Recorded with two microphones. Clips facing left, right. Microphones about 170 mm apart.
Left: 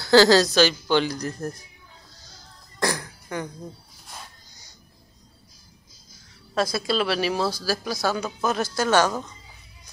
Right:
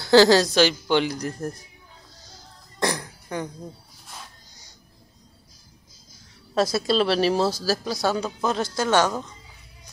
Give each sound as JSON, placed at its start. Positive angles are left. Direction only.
{"t": 0.0, "sound": "speech", "side_deg": -20}
{"t": 2.8, "sound": "throat clearing", "side_deg": -20}
{"t": 6.5, "sound": "speech", "side_deg": -30}
{"t": 8.0, "sound": "speech", "side_deg": 0}
{"t": 8.7, "sound": "speech", "side_deg": -20}